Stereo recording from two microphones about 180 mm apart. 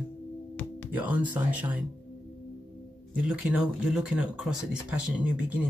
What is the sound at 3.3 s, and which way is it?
Speech, 5° right (ahead or behind).